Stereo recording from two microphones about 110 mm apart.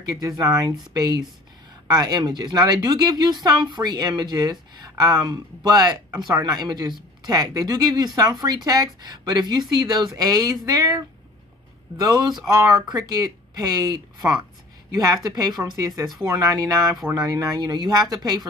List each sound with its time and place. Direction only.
0.4 s a woman's voice: 30° right (ahead or behind)
12.0 s a woman's voice: 30° right (ahead or behind)